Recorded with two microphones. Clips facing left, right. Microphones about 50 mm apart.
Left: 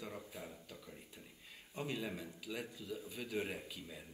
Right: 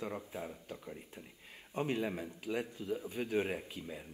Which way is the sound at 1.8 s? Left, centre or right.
Right.